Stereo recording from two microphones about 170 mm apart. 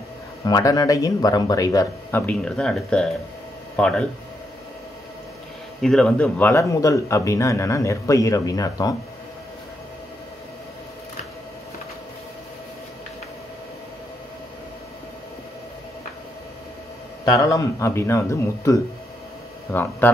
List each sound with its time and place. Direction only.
0.5 s speech: 20° left (ahead or behind); by 4.0 s 5° left (ahead or behind)
5.8 s speech: 5° left (ahead or behind); by 8.9 s 20° left (ahead or behind)
17.2 s speech: 20° left (ahead or behind)